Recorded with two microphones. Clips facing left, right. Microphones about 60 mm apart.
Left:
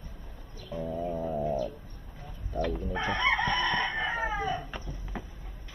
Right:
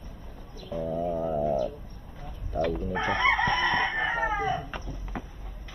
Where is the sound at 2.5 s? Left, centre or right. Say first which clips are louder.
Right 3 dB; right.